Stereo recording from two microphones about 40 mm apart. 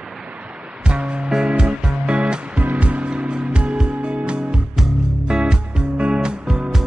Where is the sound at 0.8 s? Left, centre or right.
Right.